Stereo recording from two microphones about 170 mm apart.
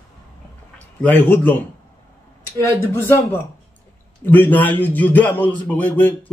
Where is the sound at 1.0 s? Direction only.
10° left (ahead or behind).